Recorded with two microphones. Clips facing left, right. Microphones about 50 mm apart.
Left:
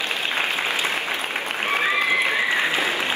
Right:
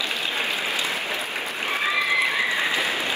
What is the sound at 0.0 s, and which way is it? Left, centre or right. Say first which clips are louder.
Applause: left 2 dB; left.